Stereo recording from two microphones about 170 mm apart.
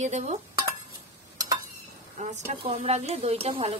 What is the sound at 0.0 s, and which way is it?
Dishes, 45° right (ahead or behind).